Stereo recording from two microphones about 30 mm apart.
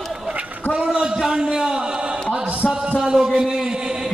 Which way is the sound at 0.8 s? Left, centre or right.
Right.